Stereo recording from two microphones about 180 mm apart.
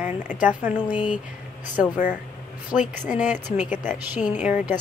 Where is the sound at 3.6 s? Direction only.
45° left (ahead or behind).